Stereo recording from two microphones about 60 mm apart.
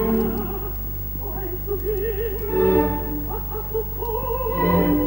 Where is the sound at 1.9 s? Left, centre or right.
Left.